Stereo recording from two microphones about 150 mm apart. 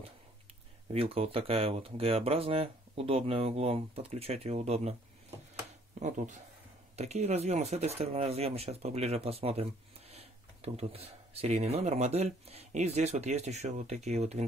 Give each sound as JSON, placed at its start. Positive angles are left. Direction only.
{"t": 0.9, "sound": "speech", "side_deg": -40}
{"t": 5.9, "sound": "speech", "side_deg": -55}